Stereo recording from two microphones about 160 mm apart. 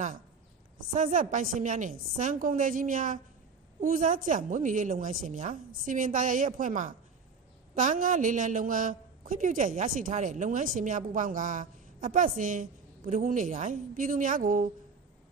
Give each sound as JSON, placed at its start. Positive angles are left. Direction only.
{"t": 0.9, "sound": "a woman's voice", "side_deg": -55}